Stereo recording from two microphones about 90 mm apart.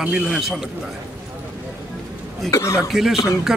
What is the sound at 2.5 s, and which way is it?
Speech, 35° left (ahead or behind).